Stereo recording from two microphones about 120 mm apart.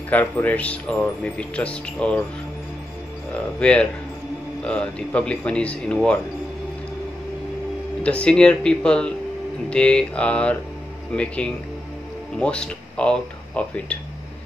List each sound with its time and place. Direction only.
0.1 s speech: 15° left (ahead or behind)
3.3 s speech: 10° left (ahead or behind)
8.0 s speech: 10° left (ahead or behind)